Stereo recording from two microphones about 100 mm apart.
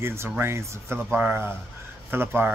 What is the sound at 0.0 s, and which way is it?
Speech, 25° right (ahead or behind).